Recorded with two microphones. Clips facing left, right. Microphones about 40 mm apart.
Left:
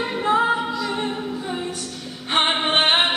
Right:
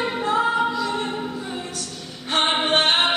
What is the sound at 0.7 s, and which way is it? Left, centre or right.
Music, centre.